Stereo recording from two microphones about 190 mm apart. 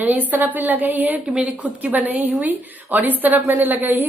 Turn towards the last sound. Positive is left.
turn(degrees=-10)  # may be behind; listen again after turning